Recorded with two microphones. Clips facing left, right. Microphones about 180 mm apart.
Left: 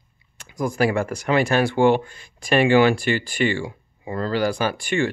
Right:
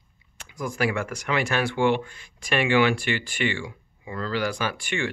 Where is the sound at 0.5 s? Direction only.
40° left (ahead or behind).